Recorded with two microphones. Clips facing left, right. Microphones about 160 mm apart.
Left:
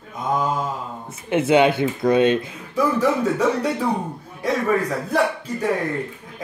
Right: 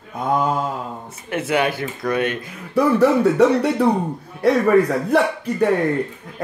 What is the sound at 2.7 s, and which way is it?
Speech, 65° right (ahead or behind).